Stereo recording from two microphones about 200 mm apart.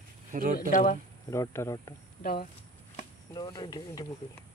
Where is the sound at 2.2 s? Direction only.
45° left (ahead or behind).